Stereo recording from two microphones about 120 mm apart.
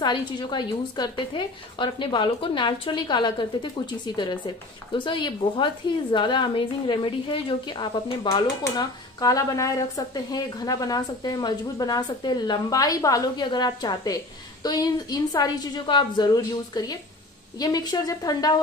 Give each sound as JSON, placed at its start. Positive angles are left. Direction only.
{"t": 0.0, "sound": "a woman's voice", "side_deg": 40}
{"t": 8.7, "sound": "a woman's voice", "side_deg": 30}